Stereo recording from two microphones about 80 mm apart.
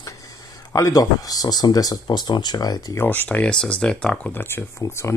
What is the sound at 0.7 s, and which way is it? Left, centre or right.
Speech, left.